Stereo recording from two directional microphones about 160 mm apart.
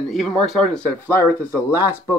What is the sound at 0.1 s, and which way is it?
Speech, centre (ahead or behind).